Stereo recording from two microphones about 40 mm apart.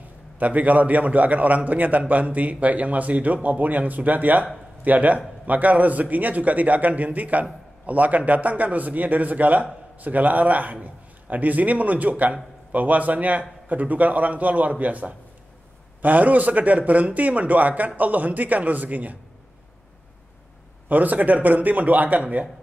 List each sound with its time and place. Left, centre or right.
0.4 s a man's voice: right
20.9 s a man's voice: right